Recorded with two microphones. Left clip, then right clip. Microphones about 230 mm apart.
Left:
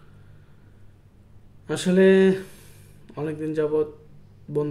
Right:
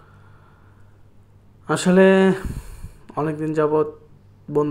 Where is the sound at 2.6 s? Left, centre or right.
Centre.